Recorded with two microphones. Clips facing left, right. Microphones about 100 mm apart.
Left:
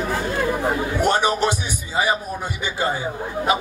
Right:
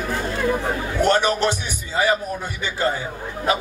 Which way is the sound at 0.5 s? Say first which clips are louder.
Left 1 dB; 15° left (ahead or behind).